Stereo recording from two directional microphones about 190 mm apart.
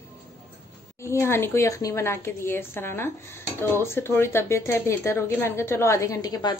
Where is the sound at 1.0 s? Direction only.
15° left (ahead or behind).